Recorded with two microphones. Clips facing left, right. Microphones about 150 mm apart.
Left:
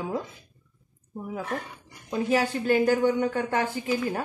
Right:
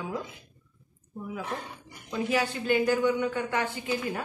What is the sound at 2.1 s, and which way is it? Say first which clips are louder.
A woman's voice: left 3 dB; 40° left (ahead or behind).